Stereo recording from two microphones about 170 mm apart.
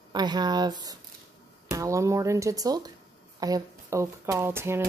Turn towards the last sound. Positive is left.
turn(degrees=-15)  # may be behind; listen again after turning